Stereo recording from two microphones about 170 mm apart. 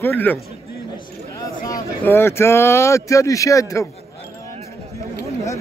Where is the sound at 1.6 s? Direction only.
15° left (ahead or behind).